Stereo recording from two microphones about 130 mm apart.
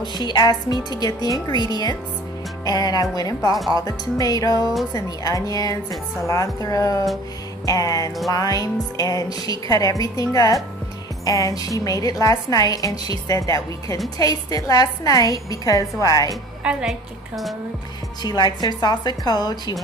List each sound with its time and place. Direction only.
0.0 s a woman's voice: 35° left (ahead or behind)
16.6 s a woman's voice: 10° right (ahead or behind)
18.2 s speech: 35° left (ahead or behind)